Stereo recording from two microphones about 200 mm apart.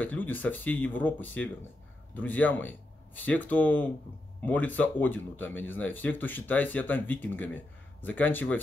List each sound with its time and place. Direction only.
0.0 s speech: 10° left (ahead or behind)